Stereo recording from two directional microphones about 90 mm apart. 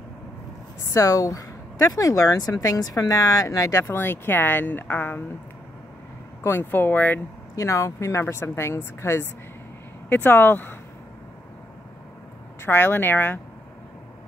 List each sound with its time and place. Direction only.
0.8 s speech: 40° left (ahead or behind)
3.8 s speech: 25° left (ahead or behind)
6.4 s speech: 25° left (ahead or behind)
7.5 s speech: 35° left (ahead or behind)
12.6 s speech: 25° left (ahead or behind)